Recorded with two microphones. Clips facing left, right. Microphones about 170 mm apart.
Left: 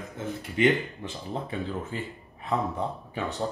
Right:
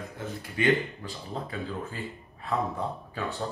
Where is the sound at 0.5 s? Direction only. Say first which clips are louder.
Left 2 dB; 20° left (ahead or behind).